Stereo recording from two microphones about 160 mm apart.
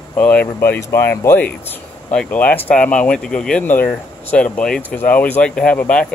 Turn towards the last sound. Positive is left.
turn(degrees=5)  # may be behind; listen again after turning